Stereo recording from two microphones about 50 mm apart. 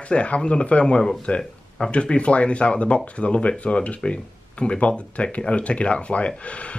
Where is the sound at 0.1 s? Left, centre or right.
Left.